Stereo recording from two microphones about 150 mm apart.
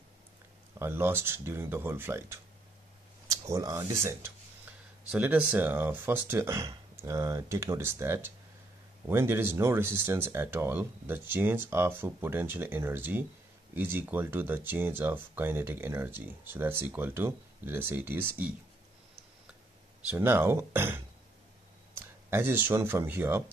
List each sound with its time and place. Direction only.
0.7 s speech: 15° right (ahead or behind)
20.2 s speech: 15° right (ahead or behind)